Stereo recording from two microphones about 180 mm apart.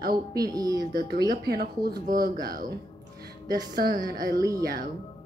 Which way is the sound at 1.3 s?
60° right (ahead or behind).